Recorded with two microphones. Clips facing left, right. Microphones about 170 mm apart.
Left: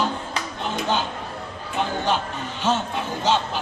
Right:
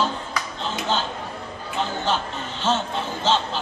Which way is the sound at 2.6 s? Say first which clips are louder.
Even; 10° left (ahead or behind).